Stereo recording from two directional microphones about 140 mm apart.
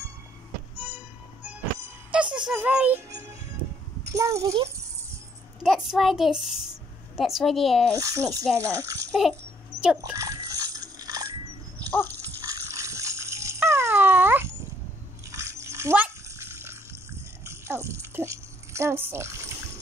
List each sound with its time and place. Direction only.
0.7 s music: 10° right (ahead or behind)
2.0 s speech: 10° right (ahead or behind)
3.1 s music: 20° right (ahead or behind)
4.1 s a child's voice: 25° right (ahead or behind)
5.6 s a child's voice: centre (ahead or behind)
7.9 s speech: 25° right (ahead or behind)
9.8 s speech: 5° right (ahead or behind)
10.1 s water: 20° right (ahead or behind)
11.9 s dog: 15° left (ahead or behind)
12.7 s cat: 20° right (ahead or behind)
15.3 s water: 20° right (ahead or behind)
17.5 s a sound: 20° right (ahead or behind)